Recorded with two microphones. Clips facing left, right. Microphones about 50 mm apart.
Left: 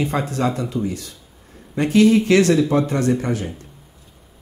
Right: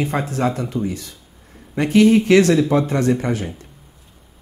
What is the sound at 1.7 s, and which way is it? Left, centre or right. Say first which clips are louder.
Speech: right 1 dB; right.